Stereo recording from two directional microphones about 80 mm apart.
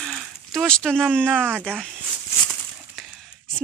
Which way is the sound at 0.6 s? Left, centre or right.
Centre.